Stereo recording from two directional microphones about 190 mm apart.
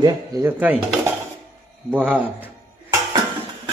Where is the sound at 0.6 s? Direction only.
10° right (ahead or behind).